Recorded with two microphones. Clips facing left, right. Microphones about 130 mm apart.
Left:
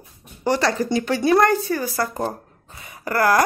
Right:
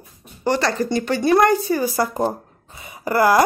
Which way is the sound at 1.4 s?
10° right (ahead or behind).